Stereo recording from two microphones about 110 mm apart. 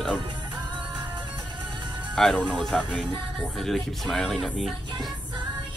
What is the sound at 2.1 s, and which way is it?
Speech, 5° left (ahead or behind).